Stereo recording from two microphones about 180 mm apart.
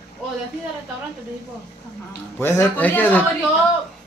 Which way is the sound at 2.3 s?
15° left (ahead or behind).